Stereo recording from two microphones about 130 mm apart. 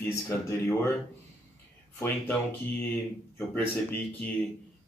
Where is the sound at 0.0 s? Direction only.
20° left (ahead or behind).